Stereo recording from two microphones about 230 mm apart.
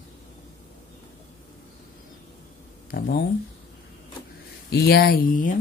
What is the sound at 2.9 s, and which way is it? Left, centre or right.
Speech, left.